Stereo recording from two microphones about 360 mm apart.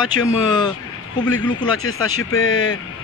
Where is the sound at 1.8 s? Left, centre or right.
Left.